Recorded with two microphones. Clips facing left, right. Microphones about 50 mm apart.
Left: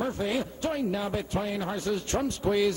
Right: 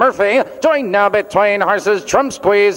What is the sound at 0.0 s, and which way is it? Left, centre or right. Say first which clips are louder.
A man's voice: right 17 dB; right.